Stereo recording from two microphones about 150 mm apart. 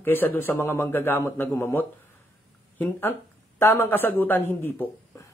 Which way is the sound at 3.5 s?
15° left (ahead or behind).